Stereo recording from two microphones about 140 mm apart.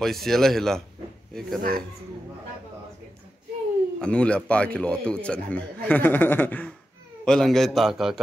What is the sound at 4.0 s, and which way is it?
A man's voice, 10° left (ahead or behind).